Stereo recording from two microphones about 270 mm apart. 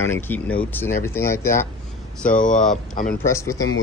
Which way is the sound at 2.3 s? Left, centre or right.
Left.